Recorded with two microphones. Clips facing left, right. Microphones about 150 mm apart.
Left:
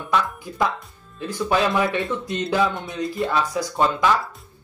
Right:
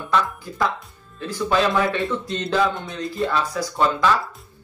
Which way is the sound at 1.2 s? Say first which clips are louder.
Right 1 dB; 15° left (ahead or behind).